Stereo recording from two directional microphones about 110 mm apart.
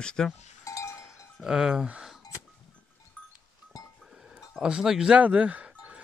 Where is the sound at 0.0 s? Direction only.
5° left (ahead or behind).